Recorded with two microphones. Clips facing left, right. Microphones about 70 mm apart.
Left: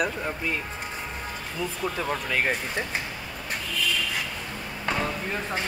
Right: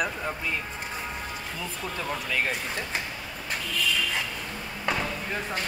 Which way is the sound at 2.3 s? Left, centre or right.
Left.